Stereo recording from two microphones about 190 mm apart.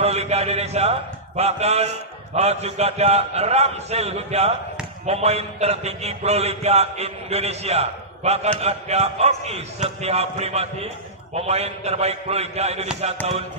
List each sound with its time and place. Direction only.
0.0 s a man's voice: 35° right (ahead or behind)